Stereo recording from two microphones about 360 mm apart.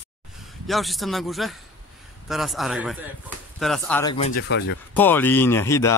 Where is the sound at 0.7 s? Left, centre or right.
Centre.